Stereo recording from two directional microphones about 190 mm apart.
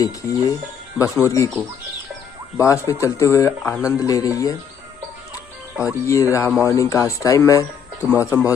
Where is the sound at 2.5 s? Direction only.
15° left (ahead or behind).